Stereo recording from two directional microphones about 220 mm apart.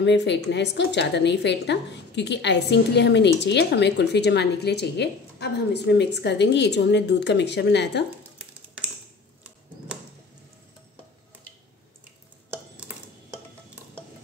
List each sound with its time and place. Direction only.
0.0 s a woman's voice: 50° left (ahead or behind)